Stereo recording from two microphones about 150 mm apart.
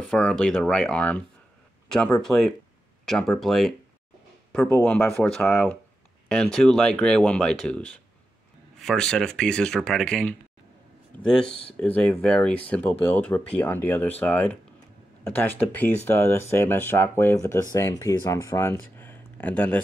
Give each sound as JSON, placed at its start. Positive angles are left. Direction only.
{"t": 0.1, "sound": "speech", "side_deg": 5}